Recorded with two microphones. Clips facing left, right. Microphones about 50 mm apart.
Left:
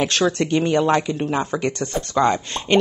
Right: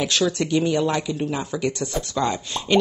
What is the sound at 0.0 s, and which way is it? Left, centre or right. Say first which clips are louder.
Speech: left 3 dB; left.